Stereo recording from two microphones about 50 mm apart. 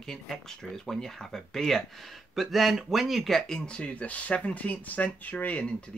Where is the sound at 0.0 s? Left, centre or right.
Centre.